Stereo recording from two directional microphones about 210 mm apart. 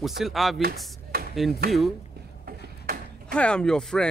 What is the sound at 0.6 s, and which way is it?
Chopping, 45° right (ahead or behind).